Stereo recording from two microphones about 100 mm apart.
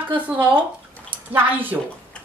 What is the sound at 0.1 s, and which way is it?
Speech, 15° right (ahead or behind).